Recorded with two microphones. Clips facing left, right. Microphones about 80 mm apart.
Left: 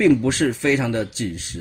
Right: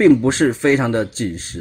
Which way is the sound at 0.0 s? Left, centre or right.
Right.